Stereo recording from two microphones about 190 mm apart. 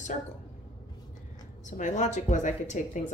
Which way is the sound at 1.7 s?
40° left (ahead or behind).